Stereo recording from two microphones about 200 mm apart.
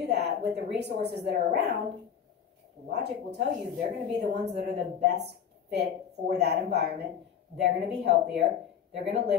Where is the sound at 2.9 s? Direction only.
55° right (ahead or behind).